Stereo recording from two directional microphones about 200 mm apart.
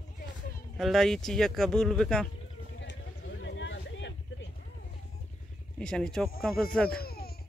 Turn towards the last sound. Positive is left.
turn(degrees=50)  # may be behind; listen again after turning